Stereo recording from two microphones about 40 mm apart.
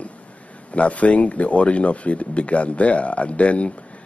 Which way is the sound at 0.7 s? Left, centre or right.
Left.